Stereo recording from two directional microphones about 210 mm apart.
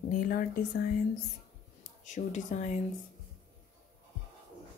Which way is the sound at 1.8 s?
35° left (ahead or behind).